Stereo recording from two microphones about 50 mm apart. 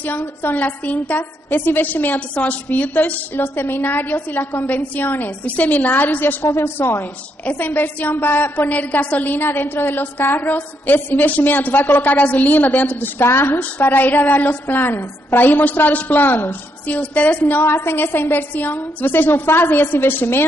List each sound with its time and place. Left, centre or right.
0.0 s a woman's voice: left
2.1 s a woman's voice: left
17.4 s a woman's voice: left